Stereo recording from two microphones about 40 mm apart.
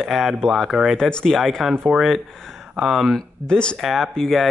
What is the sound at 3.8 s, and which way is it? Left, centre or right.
Speech, centre.